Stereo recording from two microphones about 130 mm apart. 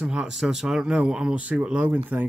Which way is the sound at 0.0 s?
5° right (ahead or behind).